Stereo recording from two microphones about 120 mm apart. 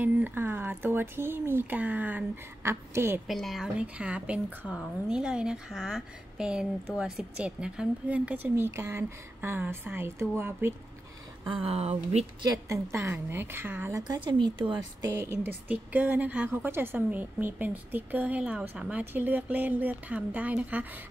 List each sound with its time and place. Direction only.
0.0 s a woman's voice: 15° right (ahead or behind)
3.3 s a woman's voice: centre (ahead or behind); by 10.7 s 20° right (ahead or behind)
11.5 s speech: 55° right (ahead or behind)
12.6 s a woman's voice: 25° right (ahead or behind)
14.2 s speech: 40° right (ahead or behind)
15.1 s a woman's voice: 20° right (ahead or behind)